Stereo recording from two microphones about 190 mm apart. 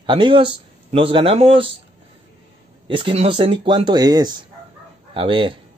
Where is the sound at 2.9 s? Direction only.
25° right (ahead or behind).